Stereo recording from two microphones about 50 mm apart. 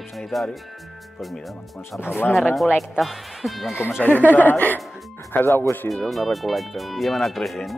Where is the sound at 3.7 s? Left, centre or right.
Left.